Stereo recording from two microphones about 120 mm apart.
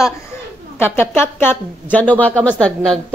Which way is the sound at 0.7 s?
20° left (ahead or behind).